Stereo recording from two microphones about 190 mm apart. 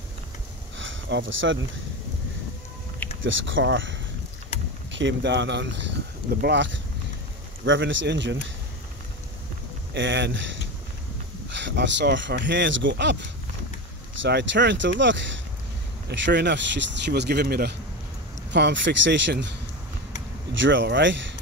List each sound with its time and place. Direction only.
0.7 s a sound: 80° right
3.2 s speech: 80° right
4.9 s speech: 70° right (ahead or behind)
9.9 s speech: 70° right (ahead or behind)
14.2 s speech: 70° right (ahead or behind)
20.5 s speech: 70° right (ahead or behind)